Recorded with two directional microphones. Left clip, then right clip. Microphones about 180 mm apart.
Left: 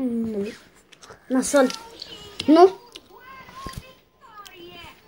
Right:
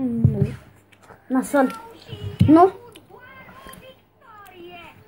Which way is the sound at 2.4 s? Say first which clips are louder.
Even; 15° left (ahead or behind).